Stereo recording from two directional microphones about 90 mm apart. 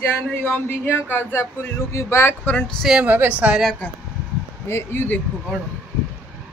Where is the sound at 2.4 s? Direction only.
15° left (ahead or behind).